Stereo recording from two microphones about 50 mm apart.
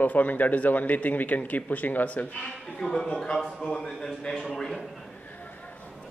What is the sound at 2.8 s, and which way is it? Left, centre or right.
A man's voice, centre.